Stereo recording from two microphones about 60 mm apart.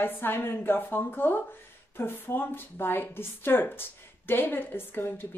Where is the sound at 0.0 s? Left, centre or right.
Left.